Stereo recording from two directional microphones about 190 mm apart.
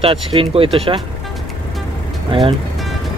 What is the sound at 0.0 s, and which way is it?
Speech, 30° right (ahead or behind).